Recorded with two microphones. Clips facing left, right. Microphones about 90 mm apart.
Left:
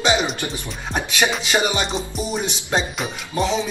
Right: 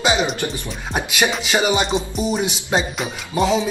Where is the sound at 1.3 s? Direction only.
5° right (ahead or behind).